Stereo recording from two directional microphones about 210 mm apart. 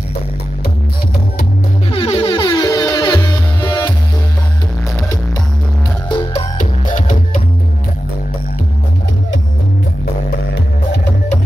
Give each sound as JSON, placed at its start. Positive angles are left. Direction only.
{"t": 1.9, "sound": "music", "side_deg": 25}
{"t": 6.0, "sound": "music", "side_deg": 20}
{"t": 6.6, "sound": "music", "side_deg": 35}